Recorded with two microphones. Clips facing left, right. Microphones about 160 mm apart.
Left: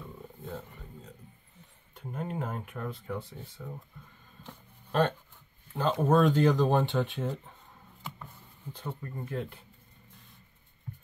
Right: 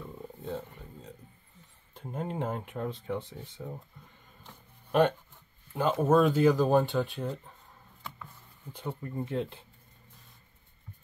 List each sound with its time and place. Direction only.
2.0 s speech: 25° right (ahead or behind)
5.8 s speech: 5° right (ahead or behind)
8.7 s speech: 15° right (ahead or behind)